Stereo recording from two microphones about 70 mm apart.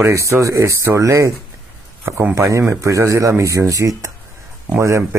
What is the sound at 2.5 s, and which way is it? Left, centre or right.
Speech, right.